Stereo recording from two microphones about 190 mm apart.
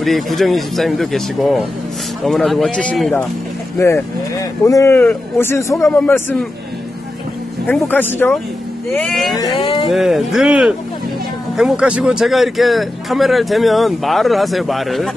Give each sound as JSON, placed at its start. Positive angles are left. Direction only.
{"t": 0.0, "sound": "speech", "side_deg": 0}
{"t": 7.6, "sound": "speech", "side_deg": 10}
{"t": 9.4, "sound": "speech", "side_deg": 25}
{"t": 9.8, "sound": "speech", "side_deg": 0}